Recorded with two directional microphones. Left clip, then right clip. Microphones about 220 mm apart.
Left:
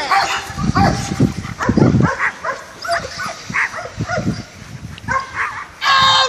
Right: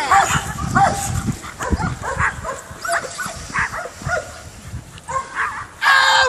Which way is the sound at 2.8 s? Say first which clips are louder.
Even; 45° left (ahead or behind).